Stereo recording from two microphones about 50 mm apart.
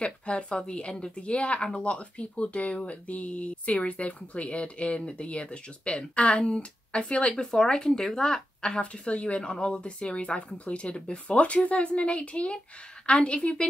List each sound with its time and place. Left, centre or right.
0.0 s a woman's voice: left
7.5 s a woman's voice: centre